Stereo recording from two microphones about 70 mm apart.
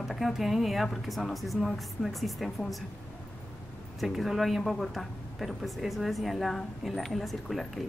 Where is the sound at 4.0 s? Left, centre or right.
Centre.